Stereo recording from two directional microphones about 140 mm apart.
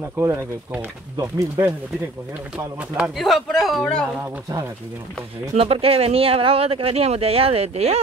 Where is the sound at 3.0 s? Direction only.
Centre (ahead or behind).